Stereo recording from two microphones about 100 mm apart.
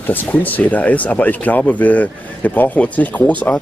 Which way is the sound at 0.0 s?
20° left (ahead or behind).